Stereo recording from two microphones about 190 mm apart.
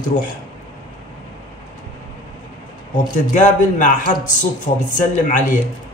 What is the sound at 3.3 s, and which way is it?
A man's voice, 40° left (ahead or behind).